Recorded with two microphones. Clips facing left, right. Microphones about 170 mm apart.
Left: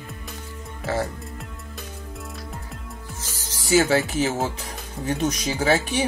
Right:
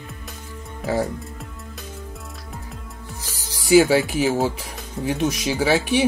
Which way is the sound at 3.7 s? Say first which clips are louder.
Right 4 dB; 10° right (ahead or behind).